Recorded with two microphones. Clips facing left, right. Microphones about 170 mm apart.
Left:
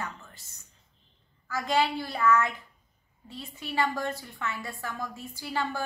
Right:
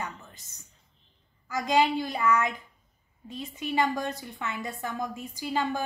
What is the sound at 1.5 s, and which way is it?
A child's voice, 15° right (ahead or behind).